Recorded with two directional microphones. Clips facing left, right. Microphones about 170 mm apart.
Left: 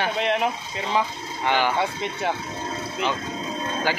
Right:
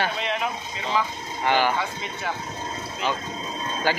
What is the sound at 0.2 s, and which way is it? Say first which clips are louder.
Speech: left 5 dB; 60° left (ahead or behind).